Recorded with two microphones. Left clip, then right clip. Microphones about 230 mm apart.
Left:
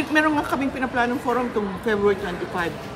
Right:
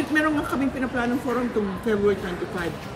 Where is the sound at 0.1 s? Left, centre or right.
Left.